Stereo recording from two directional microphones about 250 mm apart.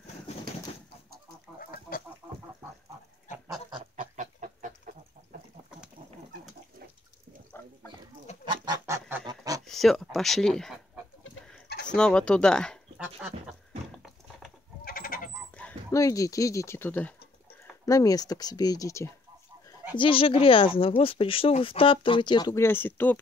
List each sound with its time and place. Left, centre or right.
1.6 s chicken: left
3.3 s goose: centre
3.9 s chicken: right
8.3 s goose: left
8.6 s goose: centre
9.7 s speech: centre
11.9 s speech: centre
13.5 s a sound: centre
14.9 s goat: left
15.5 s speech: centre